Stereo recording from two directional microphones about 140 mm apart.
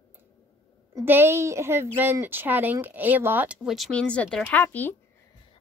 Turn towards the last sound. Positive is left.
turn(degrees=15)  # may be behind; listen again after turning